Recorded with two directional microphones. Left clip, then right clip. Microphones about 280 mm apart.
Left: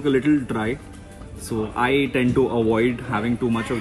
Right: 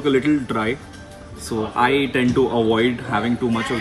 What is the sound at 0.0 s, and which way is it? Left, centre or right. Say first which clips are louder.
Speech: right 1 dB; centre.